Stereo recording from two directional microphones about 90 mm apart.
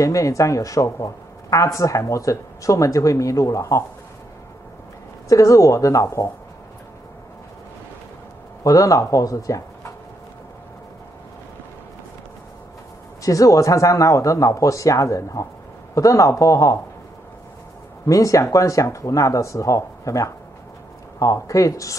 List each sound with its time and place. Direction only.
0.0 s speech: 35° left (ahead or behind)
5.3 s speech: 35° left (ahead or behind)
8.6 s speech: 35° left (ahead or behind)
13.2 s speech: 35° left (ahead or behind)
18.0 s speech: 35° left (ahead or behind)